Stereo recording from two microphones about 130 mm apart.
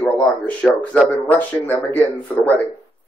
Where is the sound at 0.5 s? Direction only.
10° left (ahead or behind).